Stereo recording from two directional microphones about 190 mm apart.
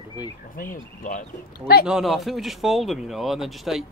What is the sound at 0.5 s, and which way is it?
Speech, 45° left (ahead or behind).